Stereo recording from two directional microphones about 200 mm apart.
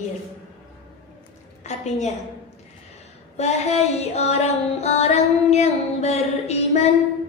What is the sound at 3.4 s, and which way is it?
Music, 30° left (ahead or behind).